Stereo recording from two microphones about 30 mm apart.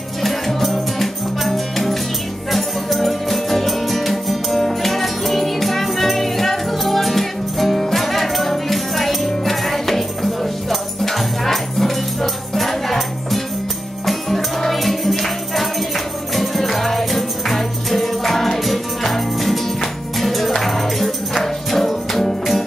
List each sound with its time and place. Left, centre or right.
0.2 s music: centre
14.7 s music: centre